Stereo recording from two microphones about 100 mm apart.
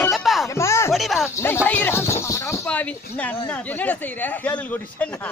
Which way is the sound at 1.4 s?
25° left (ahead or behind).